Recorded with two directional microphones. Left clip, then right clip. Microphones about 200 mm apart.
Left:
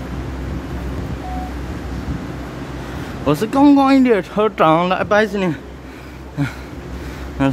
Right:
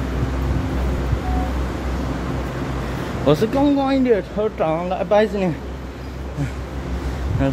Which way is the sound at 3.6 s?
30° left (ahead or behind).